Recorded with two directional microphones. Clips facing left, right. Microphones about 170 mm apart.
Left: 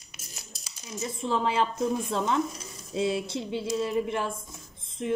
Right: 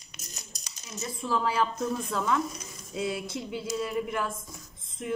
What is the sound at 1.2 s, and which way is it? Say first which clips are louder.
Speech: left 1 dB; 20° left (ahead or behind).